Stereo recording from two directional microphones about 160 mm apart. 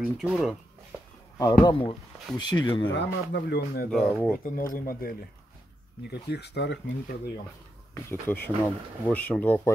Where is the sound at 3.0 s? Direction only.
90° left.